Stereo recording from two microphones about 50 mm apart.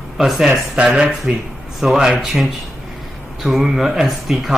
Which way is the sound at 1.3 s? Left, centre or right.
Right.